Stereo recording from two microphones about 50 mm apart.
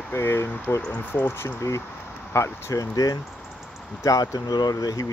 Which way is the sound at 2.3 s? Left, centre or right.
Left.